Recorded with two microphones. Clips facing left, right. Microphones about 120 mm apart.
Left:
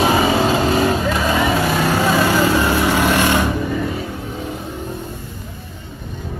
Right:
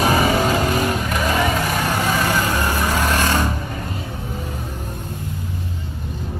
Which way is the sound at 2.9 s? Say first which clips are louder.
Left 4 dB; 15° left (ahead or behind).